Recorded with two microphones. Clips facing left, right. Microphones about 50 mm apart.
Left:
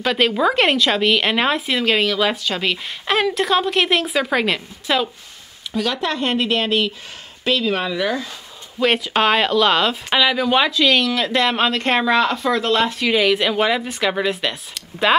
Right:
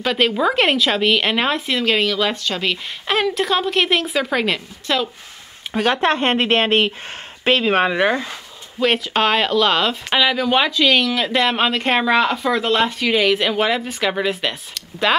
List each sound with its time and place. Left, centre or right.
0.0 s speech: centre
5.7 s speech: right
8.7 s speech: centre